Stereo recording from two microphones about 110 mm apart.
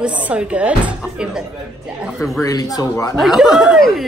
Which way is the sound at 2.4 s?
35° left (ahead or behind).